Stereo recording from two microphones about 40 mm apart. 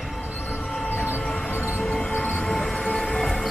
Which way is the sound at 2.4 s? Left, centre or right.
Centre.